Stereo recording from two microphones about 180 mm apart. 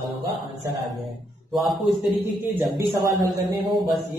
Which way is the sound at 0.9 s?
Centre (ahead or behind).